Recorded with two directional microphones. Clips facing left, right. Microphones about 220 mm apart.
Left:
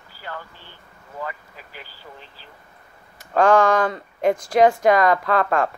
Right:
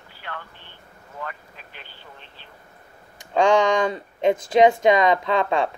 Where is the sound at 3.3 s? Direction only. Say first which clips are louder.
Left 2 dB; 20° right (ahead or behind).